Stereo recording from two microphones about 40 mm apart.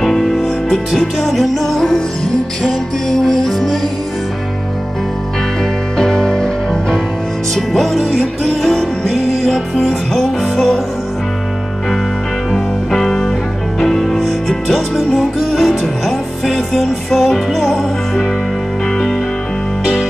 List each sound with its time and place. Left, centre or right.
0.0 s music: centre
3.1 s music: centre
5.9 s music: centre
7.5 s music: centre
12.5 s music: centre
15.0 s music: centre